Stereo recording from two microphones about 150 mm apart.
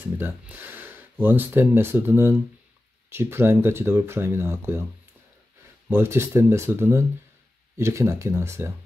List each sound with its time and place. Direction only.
0.0 s speech: 15° right (ahead or behind)
5.9 s speech: 15° right (ahead or behind)